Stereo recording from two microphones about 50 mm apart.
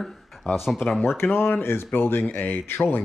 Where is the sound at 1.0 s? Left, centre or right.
Left.